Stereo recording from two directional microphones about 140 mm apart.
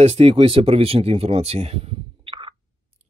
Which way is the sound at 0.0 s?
45° right (ahead or behind).